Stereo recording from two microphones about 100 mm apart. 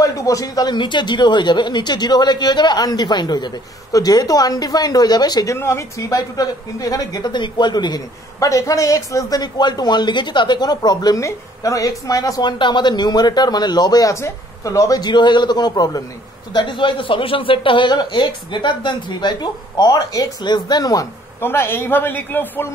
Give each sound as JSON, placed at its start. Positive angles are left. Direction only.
{"t": 0.0, "sound": "speech", "side_deg": 35}
{"t": 5.6, "sound": "speech", "side_deg": 30}
{"t": 21.4, "sound": "a man's voice", "side_deg": 25}